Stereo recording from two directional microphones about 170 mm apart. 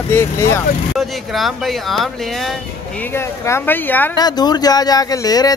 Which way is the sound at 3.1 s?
15° left (ahead or behind).